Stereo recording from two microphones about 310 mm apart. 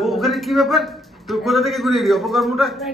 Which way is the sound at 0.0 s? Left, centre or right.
Centre.